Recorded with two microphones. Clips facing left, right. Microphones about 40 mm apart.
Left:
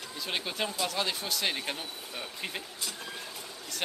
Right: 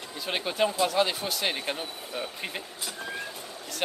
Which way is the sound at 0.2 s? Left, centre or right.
Centre.